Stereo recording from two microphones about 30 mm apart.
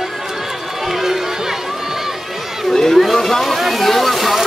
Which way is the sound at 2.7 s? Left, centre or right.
Centre.